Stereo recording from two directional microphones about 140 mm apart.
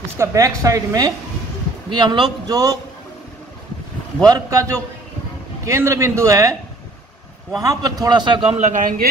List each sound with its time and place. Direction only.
0.2 s a man's voice: 20° right (ahead or behind)
4.3 s a man's voice: 25° right (ahead or behind)
7.6 s a man's voice: 25° right (ahead or behind)
8.5 s a man's voice: 60° right (ahead or behind)